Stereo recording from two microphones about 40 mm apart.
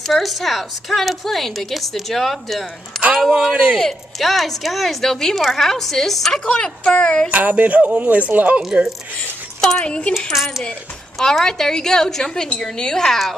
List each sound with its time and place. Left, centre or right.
0.0 s a woman's voice: centre
6.4 s speech: left
7.2 s speech: right
9.6 s speech: centre
9.8 s speech: left
10.1 s a woman's voice: centre
11.1 s a woman's voice: centre